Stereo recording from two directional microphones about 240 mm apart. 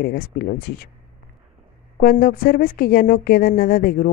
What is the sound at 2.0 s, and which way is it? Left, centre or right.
Speech, left.